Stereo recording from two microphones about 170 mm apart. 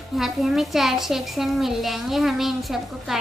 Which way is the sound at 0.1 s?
Centre (ahead or behind).